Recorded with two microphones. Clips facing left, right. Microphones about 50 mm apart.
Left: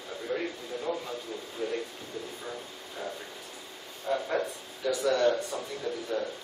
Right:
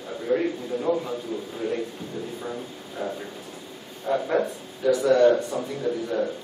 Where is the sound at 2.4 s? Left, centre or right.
Centre.